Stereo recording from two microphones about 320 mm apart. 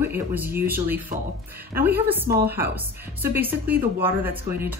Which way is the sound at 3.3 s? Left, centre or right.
Centre.